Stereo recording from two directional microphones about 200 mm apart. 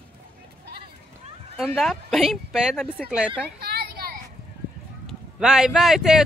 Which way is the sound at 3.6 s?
50° right (ahead or behind).